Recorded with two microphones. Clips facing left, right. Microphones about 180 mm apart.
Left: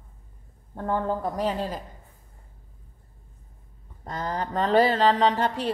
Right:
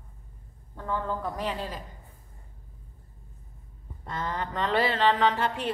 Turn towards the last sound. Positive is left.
turn(degrees=40)  # may be behind; listen again after turning